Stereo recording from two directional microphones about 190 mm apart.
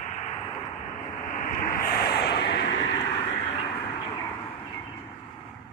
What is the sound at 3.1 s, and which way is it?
Vehicle, 30° left (ahead or behind).